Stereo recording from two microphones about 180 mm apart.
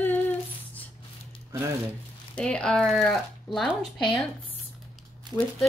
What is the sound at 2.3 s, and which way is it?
Speech, 5° left (ahead or behind).